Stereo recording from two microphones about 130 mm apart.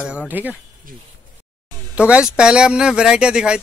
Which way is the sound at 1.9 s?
10° right (ahead or behind).